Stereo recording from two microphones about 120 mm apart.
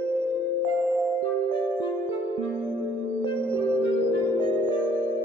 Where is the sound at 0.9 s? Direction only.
15° right (ahead or behind).